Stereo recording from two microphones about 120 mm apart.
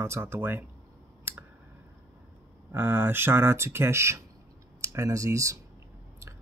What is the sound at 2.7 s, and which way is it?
Speech, 20° right (ahead or behind).